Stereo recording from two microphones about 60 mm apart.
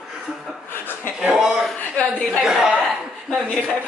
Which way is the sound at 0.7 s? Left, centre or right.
Left.